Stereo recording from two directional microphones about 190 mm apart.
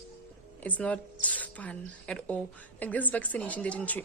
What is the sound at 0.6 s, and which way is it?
A woman's voice, 5° left (ahead or behind).